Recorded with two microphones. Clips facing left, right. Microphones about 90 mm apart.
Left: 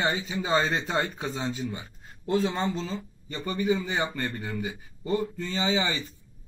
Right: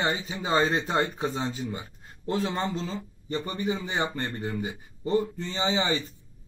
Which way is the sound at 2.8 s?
30° right (ahead or behind).